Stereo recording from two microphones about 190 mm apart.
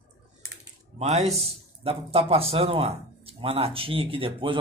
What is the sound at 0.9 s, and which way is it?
A man's voice, 35° right (ahead or behind).